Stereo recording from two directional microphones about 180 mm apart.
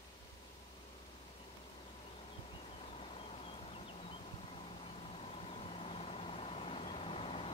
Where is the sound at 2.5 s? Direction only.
35° left (ahead or behind).